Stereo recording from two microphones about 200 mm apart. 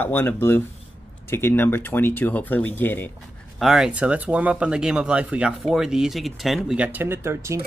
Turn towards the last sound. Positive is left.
turn(degrees=-15)  # may be behind; listen again after turning